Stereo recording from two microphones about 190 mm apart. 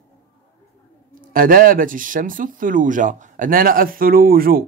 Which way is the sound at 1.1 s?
50° right (ahead or behind).